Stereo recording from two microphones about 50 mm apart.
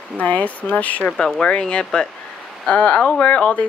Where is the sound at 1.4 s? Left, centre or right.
Centre.